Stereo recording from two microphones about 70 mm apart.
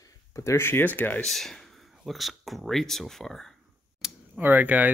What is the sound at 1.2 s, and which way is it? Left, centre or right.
Speech, centre.